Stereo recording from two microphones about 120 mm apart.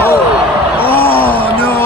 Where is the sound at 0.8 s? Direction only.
15° left (ahead or behind).